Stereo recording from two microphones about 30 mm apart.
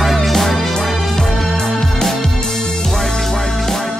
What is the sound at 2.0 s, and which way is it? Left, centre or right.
Music, left.